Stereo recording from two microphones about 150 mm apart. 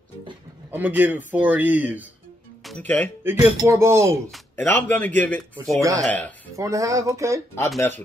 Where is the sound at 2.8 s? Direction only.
10° left (ahead or behind).